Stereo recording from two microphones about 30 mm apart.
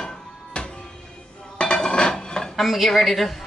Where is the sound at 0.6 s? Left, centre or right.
Left.